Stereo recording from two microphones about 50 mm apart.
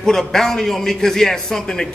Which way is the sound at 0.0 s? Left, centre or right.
Centre.